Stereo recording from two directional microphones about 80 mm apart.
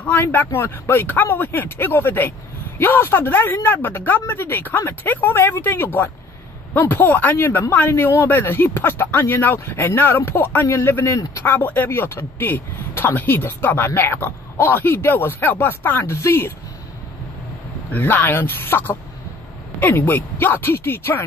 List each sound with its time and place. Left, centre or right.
0.2 s speech: left
11.4 s speech: left
17.9 s speech: left